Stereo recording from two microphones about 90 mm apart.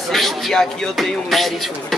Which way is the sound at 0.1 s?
5° left (ahead or behind).